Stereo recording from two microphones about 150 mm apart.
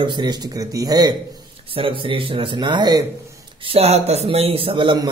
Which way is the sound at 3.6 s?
40° right (ahead or behind).